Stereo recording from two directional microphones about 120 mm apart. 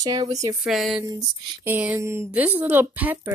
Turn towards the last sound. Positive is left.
turn(degrees=-15)  # may be behind; listen again after turning